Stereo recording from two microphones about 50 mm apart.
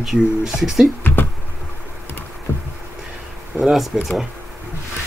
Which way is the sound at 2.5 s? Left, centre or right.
Left.